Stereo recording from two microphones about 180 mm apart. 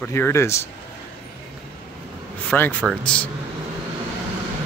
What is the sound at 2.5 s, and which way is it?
Speech, 10° left (ahead or behind).